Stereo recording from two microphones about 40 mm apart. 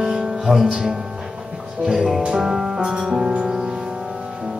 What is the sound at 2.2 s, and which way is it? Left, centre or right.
Music, right.